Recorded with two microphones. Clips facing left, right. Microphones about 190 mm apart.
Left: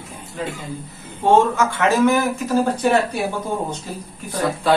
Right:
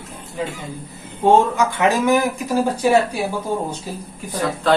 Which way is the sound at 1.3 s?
15° right (ahead or behind).